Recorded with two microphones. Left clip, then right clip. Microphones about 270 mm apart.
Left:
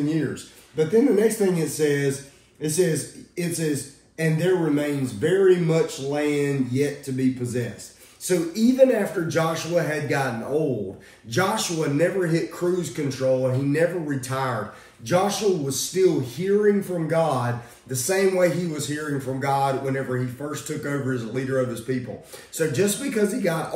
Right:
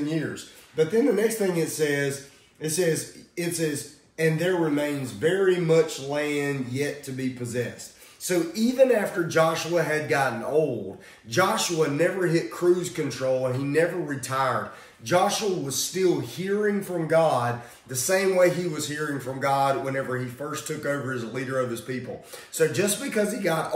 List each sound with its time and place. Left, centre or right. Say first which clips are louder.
0.3 s speech: left 2 dB; centre
11.3 s speech: right 1 dB; centre